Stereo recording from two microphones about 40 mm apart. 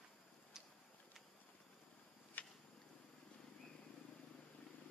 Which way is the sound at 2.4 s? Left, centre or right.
Left.